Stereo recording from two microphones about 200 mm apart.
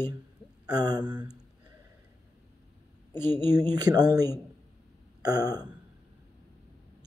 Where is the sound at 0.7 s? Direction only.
20° right (ahead or behind).